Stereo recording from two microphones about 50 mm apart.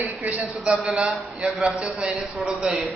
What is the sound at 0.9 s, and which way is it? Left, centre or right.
Speech, centre.